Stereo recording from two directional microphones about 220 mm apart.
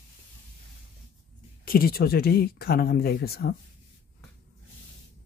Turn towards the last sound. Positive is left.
turn(degrees=45)  # may be behind; listen again after turning